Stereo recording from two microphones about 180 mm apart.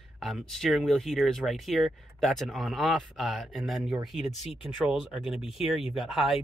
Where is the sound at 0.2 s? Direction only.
Centre (ahead or behind).